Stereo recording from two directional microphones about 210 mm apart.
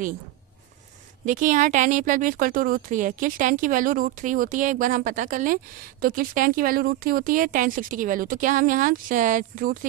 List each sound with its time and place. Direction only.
1.2 s speech: 40° right (ahead or behind)